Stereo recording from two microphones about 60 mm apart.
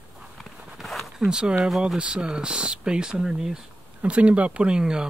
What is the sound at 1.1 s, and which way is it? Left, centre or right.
Speech, centre.